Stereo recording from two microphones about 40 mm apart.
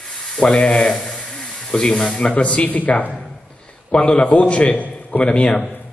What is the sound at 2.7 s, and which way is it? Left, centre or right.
Speech, left.